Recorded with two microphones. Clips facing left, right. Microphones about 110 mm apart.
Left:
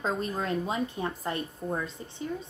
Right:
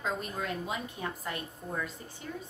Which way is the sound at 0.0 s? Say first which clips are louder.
Left 4 dB; 35° left (ahead or behind).